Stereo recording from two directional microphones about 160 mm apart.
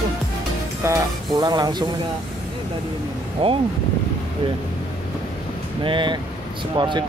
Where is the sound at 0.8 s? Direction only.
20° right (ahead or behind).